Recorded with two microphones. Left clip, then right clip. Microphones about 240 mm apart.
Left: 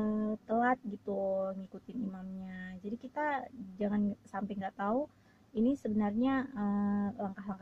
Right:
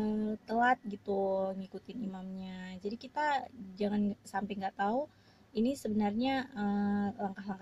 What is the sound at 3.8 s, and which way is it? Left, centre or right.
Speech, centre.